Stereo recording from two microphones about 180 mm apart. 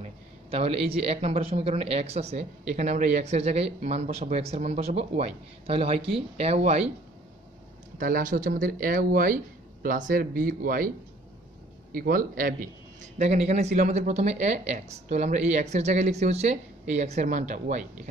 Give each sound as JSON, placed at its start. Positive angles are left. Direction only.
{"t": 0.0, "sound": "speech", "side_deg": -35}
{"t": 8.0, "sound": "speech", "side_deg": -50}
{"t": 11.9, "sound": "speech", "side_deg": -55}
{"t": 13.2, "sound": "speech", "side_deg": -40}